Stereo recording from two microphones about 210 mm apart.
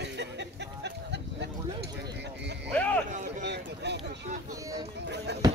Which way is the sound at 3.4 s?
55° right (ahead or behind).